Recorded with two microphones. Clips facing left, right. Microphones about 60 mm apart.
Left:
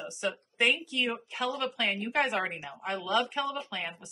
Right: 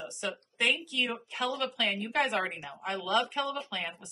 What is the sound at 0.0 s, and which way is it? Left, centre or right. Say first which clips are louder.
Speech: left 3 dB; centre.